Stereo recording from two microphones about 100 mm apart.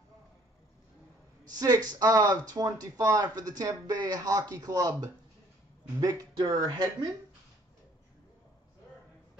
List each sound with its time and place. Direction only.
1.4 s speech: 40° right (ahead or behind)